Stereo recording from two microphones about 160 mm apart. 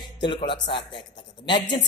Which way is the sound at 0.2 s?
30° left (ahead or behind).